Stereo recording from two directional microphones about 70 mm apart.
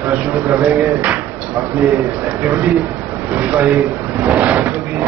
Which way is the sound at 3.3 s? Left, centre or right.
Right.